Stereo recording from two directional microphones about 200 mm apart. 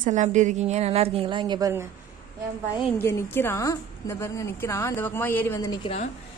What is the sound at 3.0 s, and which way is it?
A woman's voice, 10° left (ahead or behind).